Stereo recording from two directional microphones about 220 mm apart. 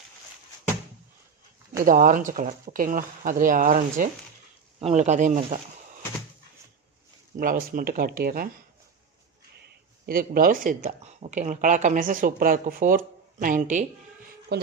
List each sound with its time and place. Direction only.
1.9 s speech: 35° right (ahead or behind)
7.3 s speech: 40° right (ahead or behind)
10.0 s speech: 40° right (ahead or behind)
14.5 s speech: 50° right (ahead or behind)